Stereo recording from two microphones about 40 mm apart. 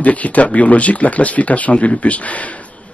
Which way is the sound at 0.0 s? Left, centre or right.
Left.